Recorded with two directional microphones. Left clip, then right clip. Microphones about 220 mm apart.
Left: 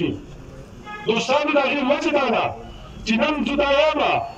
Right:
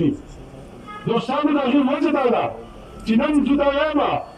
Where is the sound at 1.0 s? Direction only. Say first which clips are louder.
Left 1 dB; 55° left (ahead or behind).